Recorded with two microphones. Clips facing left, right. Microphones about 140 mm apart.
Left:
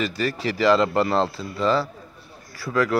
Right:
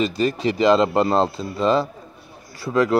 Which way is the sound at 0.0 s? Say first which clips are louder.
Right 5 dB; 20° right (ahead or behind).